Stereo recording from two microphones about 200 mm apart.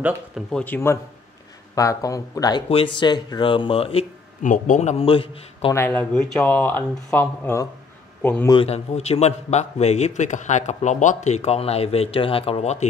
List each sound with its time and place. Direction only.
0.5 s speech: 5° left (ahead or behind); by 5.8 s 30° left (ahead or behind)
5.8 s a man's voice: 10° left (ahead or behind)
8.5 s a man's voice: 30° left (ahead or behind)